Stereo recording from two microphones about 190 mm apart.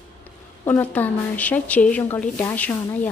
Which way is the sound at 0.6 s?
10° left (ahead or behind).